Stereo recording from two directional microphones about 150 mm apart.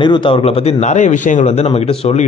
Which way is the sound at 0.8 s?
55° left (ahead or behind).